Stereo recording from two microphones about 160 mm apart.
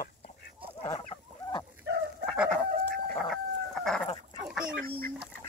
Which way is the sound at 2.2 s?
5° right (ahead or behind).